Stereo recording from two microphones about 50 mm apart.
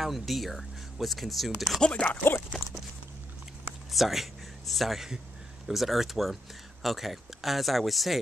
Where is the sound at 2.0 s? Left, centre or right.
Left.